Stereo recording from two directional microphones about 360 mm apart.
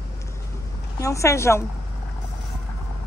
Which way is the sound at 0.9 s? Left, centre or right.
Centre.